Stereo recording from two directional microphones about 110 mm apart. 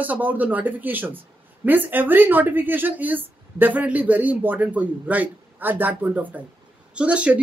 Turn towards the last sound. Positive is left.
turn(degrees=-10)  # may be behind; listen again after turning